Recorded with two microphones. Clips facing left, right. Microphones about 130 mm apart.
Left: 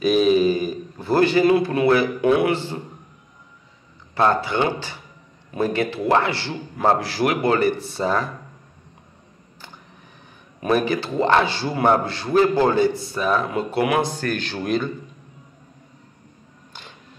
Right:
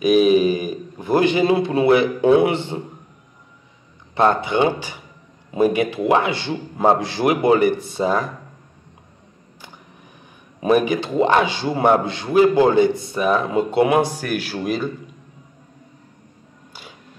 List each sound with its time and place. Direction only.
0.0 s a man's voice: 15° right (ahead or behind)
4.1 s a man's voice: 20° right (ahead or behind)
10.6 s a man's voice: 15° right (ahead or behind)
14.0 s a man's voice: 10° right (ahead or behind)